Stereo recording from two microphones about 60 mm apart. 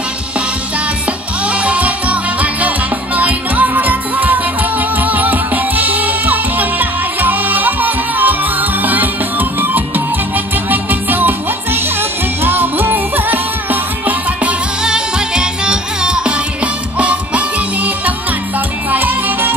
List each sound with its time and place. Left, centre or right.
1.5 s music: right
14.8 s music: centre; by 19.5 s right